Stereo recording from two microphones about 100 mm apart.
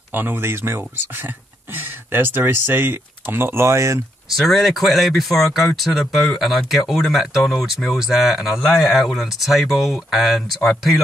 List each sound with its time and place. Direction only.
0.1 s speech: 20° right (ahead or behind)
4.4 s speech: centre (ahead or behind)